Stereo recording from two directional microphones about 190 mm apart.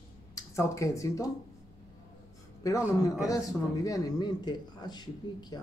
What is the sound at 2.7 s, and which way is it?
A man's voice, 15° left (ahead or behind).